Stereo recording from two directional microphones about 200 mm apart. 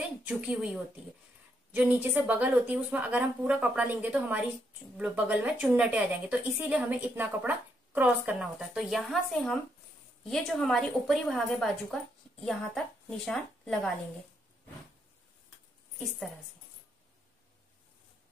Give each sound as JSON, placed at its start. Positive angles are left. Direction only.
{"t": 0.3, "sound": "a woman's voice", "side_deg": -5}